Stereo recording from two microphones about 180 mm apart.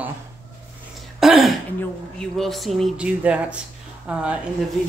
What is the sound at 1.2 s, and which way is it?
Throat clearing, centre (ahead or behind).